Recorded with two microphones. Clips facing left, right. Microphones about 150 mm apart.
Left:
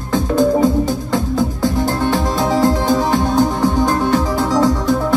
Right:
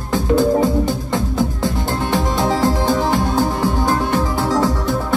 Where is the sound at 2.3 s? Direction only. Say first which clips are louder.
Left 2 dB; 20° left (ahead or behind).